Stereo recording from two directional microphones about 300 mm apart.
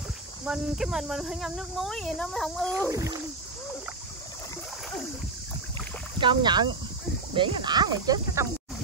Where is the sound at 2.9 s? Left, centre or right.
Centre.